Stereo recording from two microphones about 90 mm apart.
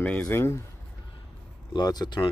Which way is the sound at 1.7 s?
50° left (ahead or behind).